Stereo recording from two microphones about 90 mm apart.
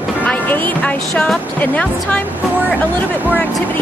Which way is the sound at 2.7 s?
20° left (ahead or behind).